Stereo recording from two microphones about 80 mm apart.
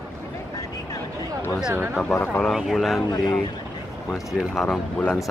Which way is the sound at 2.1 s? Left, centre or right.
Left.